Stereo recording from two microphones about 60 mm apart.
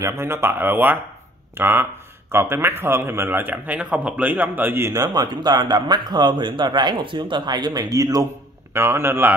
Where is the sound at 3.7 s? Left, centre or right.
Right.